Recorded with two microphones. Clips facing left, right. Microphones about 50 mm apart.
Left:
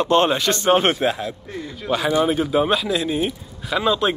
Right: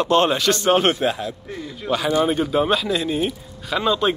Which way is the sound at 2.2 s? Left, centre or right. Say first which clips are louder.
Left 1 dB; centre.